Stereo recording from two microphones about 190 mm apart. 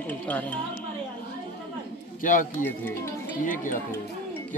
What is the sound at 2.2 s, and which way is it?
Speech, 45° left (ahead or behind).